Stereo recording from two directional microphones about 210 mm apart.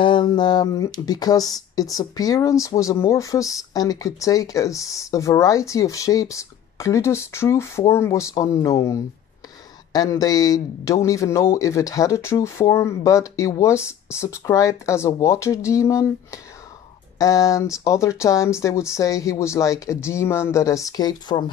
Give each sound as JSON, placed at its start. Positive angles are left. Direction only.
{"t": 0.0, "sound": "speech", "side_deg": 20}